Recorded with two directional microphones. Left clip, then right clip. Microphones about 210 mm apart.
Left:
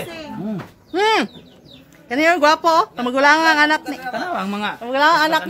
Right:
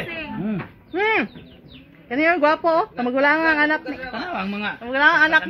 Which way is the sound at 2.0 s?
35° left (ahead or behind).